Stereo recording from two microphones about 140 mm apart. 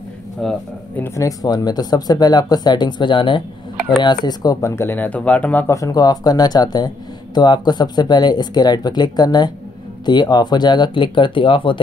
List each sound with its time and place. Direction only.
0.4 s speech: 5° left (ahead or behind)
1.0 s speech: 25° left (ahead or behind)